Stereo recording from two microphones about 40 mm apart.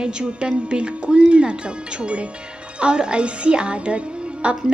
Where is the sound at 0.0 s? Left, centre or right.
Right.